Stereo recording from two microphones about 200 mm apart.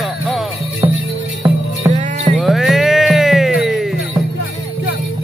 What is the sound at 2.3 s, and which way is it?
Music, centre (ahead or behind).